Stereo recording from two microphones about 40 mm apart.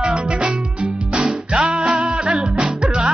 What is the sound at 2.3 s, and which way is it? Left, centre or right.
Music, centre.